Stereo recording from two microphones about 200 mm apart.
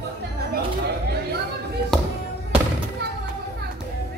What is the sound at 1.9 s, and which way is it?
Music, centre (ahead or behind).